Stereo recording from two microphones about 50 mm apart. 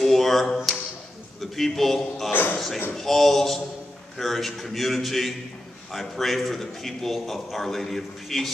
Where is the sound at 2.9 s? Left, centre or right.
Centre.